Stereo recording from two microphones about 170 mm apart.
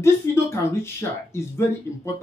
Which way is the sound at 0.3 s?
15° left (ahead or behind).